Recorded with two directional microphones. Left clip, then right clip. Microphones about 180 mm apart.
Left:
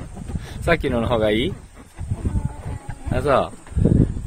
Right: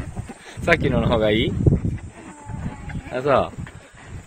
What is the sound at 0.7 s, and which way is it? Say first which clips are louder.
Speech: right 1 dB; centre (ahead or behind).